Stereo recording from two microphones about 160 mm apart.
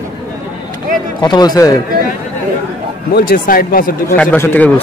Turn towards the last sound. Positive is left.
turn(degrees=10)  # may be behind; listen again after turning